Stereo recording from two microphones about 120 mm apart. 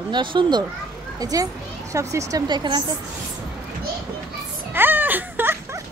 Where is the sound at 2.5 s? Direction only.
40° right (ahead or behind).